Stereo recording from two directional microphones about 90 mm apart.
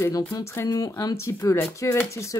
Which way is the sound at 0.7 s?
45° left (ahead or behind).